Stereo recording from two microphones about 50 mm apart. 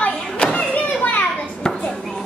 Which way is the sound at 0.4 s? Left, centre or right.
Centre.